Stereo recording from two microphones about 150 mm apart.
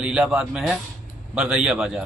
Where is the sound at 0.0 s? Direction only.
5° right (ahead or behind).